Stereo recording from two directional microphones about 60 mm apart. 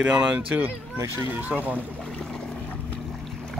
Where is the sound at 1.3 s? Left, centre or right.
Right.